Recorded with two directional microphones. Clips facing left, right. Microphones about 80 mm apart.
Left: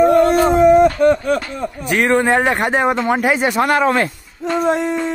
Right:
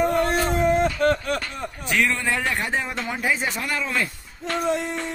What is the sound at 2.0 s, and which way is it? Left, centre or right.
Speech, left.